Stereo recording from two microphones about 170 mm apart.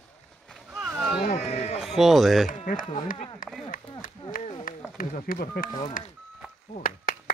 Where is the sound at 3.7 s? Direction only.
55° left (ahead or behind).